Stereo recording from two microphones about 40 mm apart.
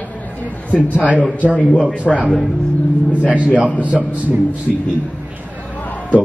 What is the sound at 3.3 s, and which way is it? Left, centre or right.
Speech, right.